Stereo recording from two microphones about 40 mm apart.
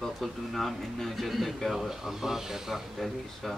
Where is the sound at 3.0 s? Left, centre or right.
Centre.